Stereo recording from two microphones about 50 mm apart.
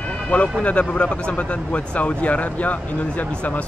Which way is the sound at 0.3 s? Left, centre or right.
Left.